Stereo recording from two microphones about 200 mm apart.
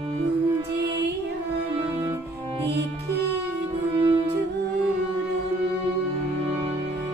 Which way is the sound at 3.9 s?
25° right (ahead or behind).